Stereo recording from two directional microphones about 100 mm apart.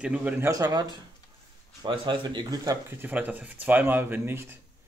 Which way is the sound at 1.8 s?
50° right (ahead or behind).